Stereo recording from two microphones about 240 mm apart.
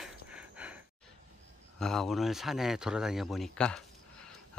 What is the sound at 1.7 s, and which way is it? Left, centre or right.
Speech, centre.